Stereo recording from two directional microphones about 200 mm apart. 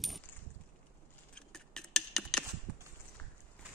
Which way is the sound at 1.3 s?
5° left (ahead or behind).